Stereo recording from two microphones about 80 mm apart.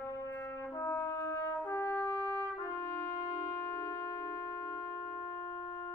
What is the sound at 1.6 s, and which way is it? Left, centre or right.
Trumpet, left.